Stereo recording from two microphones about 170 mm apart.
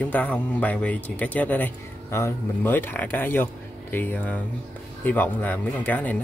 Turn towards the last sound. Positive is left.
turn(degrees=10)  # may be behind; listen again after turning